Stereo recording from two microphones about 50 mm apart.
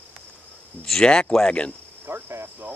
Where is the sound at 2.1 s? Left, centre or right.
Right.